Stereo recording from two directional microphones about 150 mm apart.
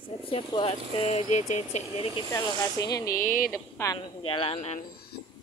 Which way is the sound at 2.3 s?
25° left (ahead or behind).